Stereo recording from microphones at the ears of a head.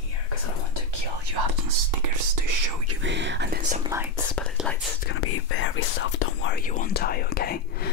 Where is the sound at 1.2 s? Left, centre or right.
Right.